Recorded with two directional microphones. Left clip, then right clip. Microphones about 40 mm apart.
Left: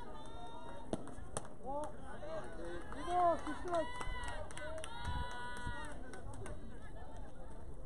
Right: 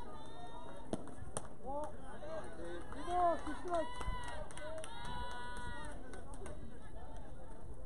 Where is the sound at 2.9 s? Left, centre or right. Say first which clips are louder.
Left 1 dB; left.